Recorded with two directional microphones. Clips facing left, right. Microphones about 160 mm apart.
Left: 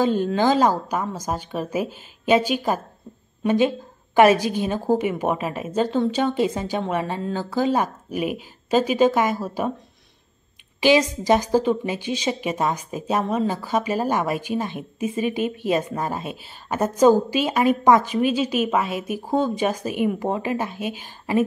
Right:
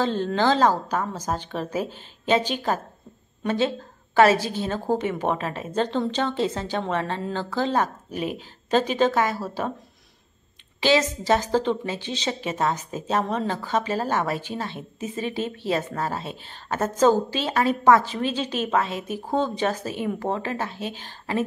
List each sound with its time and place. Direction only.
0.0 s a woman's voice: 10° left (ahead or behind)
10.8 s a woman's voice: 15° left (ahead or behind)
13.2 s speech: centre (ahead or behind)
13.5 s a woman's voice: 10° left (ahead or behind)